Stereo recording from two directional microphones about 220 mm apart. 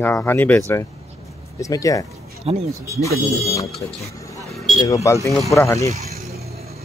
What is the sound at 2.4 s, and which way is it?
Speech, 30° right (ahead or behind).